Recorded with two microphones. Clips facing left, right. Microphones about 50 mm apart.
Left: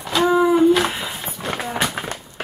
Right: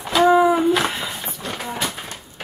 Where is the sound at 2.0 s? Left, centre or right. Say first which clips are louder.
Left 7 dB; left.